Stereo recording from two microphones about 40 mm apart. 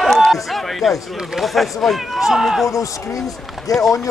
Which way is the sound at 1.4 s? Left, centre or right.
Centre.